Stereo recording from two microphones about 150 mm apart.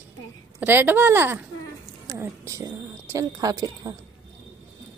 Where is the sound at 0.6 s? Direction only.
15° right (ahead or behind).